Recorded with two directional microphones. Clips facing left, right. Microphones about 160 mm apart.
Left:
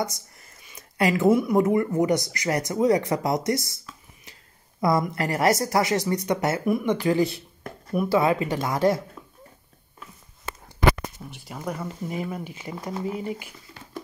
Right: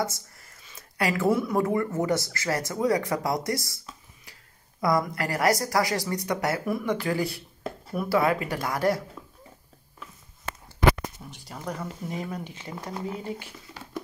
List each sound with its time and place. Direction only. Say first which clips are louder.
0.7 s speech: left 4 dB; 20° left (ahead or behind)
7.9 s speech: left 3 dB; 10° left (ahead or behind)
8.2 s speech: left 2 dB; 20° left (ahead or behind)
11.3 s speech: left 4 dB; 10° left (ahead or behind)